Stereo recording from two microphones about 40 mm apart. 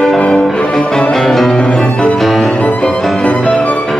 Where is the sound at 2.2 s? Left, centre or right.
Centre.